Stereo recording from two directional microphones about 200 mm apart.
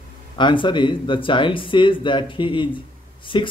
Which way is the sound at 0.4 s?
25° left (ahead or behind).